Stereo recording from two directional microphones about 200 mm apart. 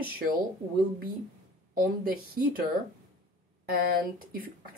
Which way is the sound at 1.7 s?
45° right (ahead or behind).